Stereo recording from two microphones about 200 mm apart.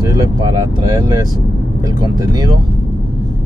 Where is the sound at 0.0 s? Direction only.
20° right (ahead or behind).